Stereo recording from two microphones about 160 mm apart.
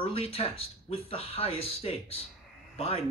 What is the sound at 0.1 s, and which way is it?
A man's voice, 40° left (ahead or behind).